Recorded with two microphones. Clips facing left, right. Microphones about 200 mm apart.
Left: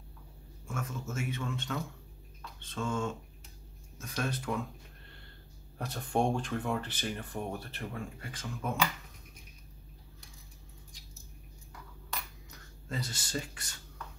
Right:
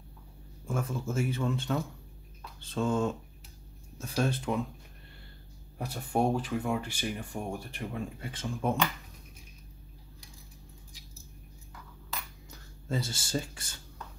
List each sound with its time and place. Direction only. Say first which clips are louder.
0.7 s speech: right 6 dB; 30° right (ahead or behind)
5.8 s speech: right 1 dB; 10° right (ahead or behind); by 8.7 s 30° right (ahead or behind)
12.4 s speech: right 10 dB; 30° right (ahead or behind)